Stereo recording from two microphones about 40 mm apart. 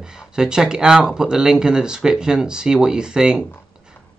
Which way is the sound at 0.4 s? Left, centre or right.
Centre.